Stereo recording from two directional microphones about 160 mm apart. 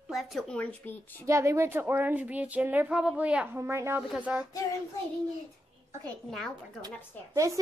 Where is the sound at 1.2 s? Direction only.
20° right (ahead or behind).